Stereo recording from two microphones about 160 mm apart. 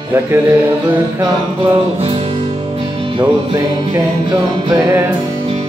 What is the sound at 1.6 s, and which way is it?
Music, 35° right (ahead or behind).